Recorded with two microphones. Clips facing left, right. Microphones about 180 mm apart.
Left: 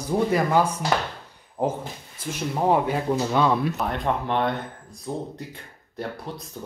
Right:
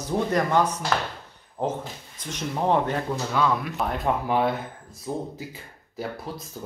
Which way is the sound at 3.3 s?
25° left (ahead or behind).